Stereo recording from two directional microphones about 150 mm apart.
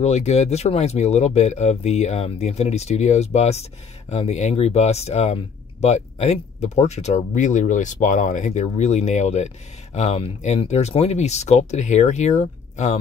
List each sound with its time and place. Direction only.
0.0 s speech: 45° left (ahead or behind)